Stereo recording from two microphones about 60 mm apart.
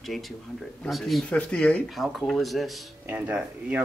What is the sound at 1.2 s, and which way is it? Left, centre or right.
Speech, left.